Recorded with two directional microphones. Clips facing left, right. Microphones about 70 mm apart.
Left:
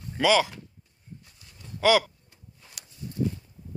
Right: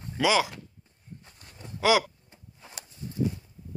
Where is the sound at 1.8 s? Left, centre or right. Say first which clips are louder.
Left 2 dB; centre.